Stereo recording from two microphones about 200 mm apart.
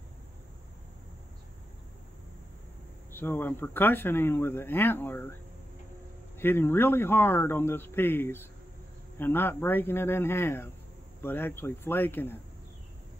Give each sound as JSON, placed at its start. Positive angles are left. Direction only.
{"t": 3.1, "sound": "speech", "side_deg": 10}
{"t": 6.3, "sound": "speech", "side_deg": 10}